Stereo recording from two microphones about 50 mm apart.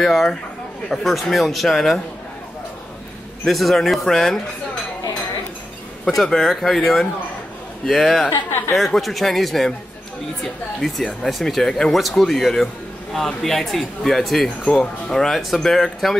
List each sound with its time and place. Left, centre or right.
0.0 s speech: centre
3.4 s speech: centre
6.0 s speech: centre
8.5 s speech: left
8.7 s speech: centre
11.2 s speech: centre